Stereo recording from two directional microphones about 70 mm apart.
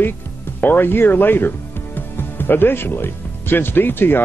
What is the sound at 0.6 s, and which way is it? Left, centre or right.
Speech, left.